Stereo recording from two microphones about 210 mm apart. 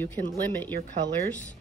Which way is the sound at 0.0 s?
10° left (ahead or behind).